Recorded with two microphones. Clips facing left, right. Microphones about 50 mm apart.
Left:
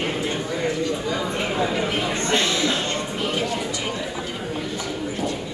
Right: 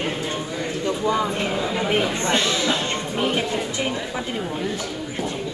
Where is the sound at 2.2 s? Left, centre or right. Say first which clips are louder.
Even; centre.